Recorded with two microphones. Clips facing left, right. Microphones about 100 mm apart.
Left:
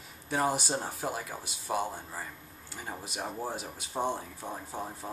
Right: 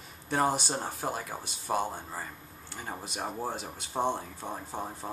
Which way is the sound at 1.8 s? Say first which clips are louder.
Right 1 dB; 25° right (ahead or behind).